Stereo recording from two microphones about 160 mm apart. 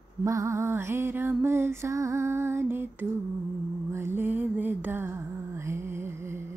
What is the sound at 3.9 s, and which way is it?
Mantra, 15° right (ahead or behind).